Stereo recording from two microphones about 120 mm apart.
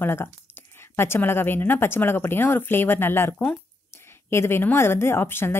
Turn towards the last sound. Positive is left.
turn(degrees=20)  # may be behind; listen again after turning